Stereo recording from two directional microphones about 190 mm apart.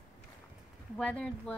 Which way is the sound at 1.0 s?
5° left (ahead or behind).